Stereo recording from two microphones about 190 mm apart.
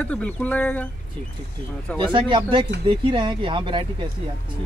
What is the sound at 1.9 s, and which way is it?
Speech, 25° right (ahead or behind).